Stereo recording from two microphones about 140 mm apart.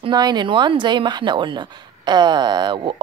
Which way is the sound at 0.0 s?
30° right (ahead or behind).